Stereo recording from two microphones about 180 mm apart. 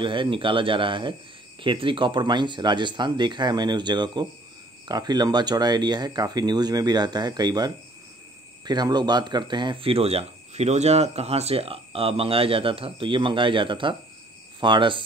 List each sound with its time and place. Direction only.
0.0 s speech: 25° right (ahead or behind)